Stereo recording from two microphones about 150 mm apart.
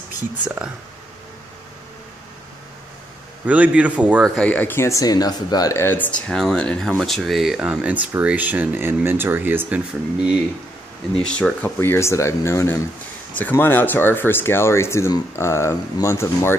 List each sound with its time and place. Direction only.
3.4 s speech: 10° right (ahead or behind)
4.4 s speech: 10° left (ahead or behind); by 9.8 s 10° right (ahead or behind)
11.2 s speech: 5° left (ahead or behind)